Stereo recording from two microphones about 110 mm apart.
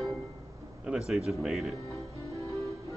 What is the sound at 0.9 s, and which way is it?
Speech, 5° right (ahead or behind).